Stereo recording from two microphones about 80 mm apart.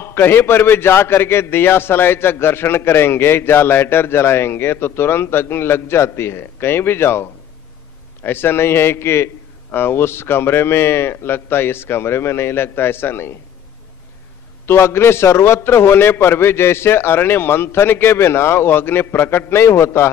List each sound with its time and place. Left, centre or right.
0.0 s a man's voice: left
14.7 s a man's voice: left